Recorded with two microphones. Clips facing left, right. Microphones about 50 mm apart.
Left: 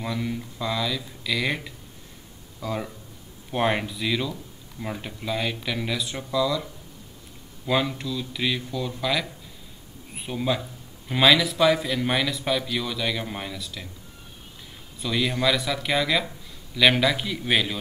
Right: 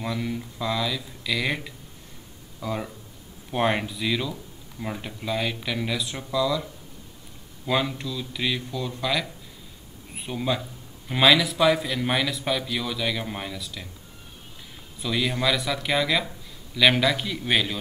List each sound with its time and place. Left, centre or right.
0.0 s a man's voice: centre
15.0 s a man's voice: centre